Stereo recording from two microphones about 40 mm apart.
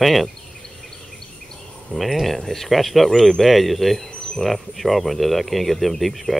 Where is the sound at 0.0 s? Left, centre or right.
Centre.